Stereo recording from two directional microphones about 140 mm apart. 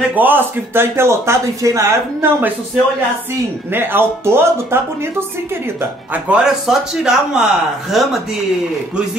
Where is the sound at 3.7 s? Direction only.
15° right (ahead or behind).